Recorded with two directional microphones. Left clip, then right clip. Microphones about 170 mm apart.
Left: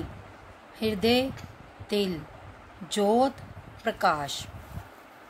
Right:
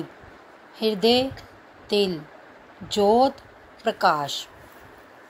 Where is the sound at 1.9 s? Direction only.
20° left (ahead or behind).